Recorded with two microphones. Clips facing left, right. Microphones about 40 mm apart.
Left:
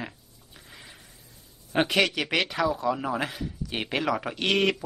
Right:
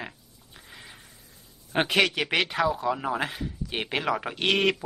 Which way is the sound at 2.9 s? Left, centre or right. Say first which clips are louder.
Even; centre.